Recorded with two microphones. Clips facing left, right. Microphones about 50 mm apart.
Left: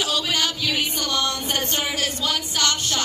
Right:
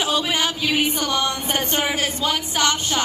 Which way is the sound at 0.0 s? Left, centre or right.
Right.